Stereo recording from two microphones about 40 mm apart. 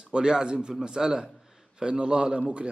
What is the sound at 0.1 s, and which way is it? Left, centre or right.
A man's voice, centre.